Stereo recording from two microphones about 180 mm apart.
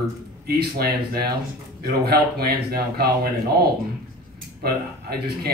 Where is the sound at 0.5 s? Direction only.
60° right (ahead or behind).